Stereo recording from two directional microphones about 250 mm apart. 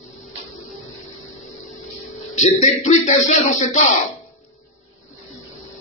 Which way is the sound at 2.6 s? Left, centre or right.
Left.